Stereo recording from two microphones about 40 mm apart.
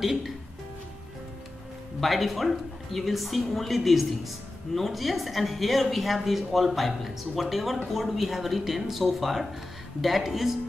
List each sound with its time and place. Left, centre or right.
0.0 s speech: centre
2.0 s a woman's voice: centre